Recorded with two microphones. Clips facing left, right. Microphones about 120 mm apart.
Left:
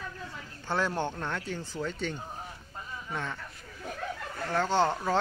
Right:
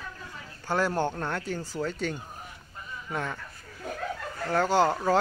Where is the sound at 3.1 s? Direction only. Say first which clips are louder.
Right 3 dB; 10° right (ahead or behind).